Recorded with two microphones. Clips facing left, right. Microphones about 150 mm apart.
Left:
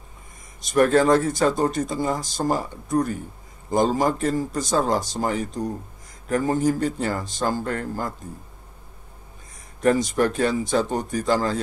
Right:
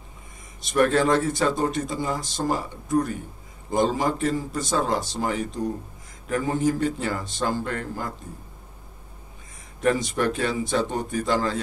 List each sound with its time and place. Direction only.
0.6 s speech: 40° left (ahead or behind)
9.8 s speech: 40° left (ahead or behind)